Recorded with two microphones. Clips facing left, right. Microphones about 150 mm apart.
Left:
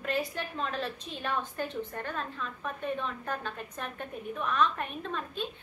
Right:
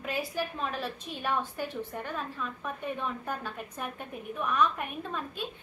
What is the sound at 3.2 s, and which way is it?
A woman's voice, 10° right (ahead or behind).